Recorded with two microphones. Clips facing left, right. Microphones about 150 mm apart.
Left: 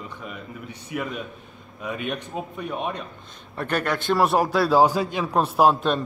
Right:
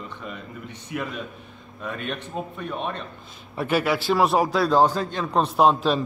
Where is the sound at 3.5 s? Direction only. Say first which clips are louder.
Right 3 dB; 5° right (ahead or behind).